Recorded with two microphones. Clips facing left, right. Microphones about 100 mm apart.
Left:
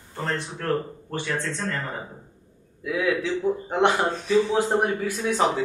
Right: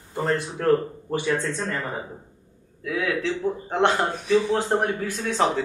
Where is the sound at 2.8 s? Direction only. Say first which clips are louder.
Left 1 dB; 15° left (ahead or behind).